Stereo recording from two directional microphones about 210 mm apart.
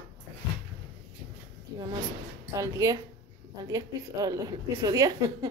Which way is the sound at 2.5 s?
15° right (ahead or behind).